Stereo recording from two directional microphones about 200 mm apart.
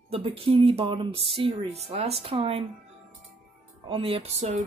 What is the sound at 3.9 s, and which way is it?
Music, 25° right (ahead or behind).